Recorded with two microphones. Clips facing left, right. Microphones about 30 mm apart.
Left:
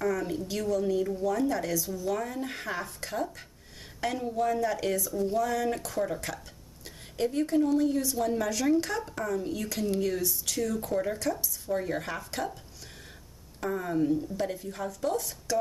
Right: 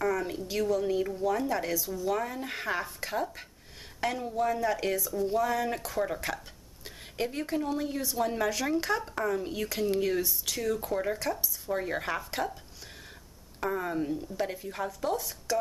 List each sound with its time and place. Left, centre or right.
0.0 s speech: centre
13.6 s speech: centre